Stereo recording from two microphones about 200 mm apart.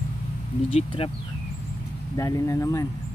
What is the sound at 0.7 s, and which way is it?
Speech, 25° left (ahead or behind).